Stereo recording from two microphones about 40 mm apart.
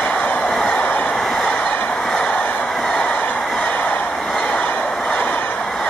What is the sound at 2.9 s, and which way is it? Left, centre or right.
Train, left.